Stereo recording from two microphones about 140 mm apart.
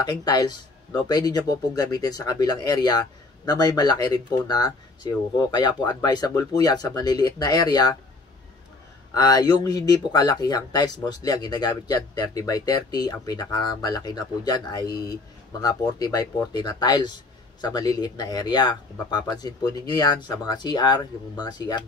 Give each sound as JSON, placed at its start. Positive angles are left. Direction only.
{"t": 0.2, "sound": "speech", "side_deg": 30}
{"t": 9.1, "sound": "speech", "side_deg": 30}